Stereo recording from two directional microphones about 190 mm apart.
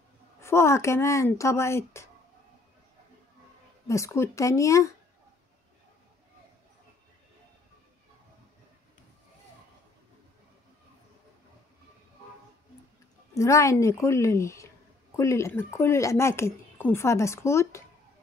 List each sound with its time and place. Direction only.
0.4 s speech: 15° left (ahead or behind)
3.8 s speech: 15° left (ahead or behind)
13.3 s speech: 15° left (ahead or behind)